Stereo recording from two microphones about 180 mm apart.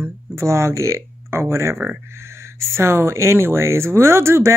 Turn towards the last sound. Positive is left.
turn(degrees=-15)  # may be behind; listen again after turning